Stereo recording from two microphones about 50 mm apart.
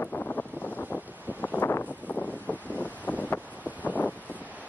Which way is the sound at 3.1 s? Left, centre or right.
Left.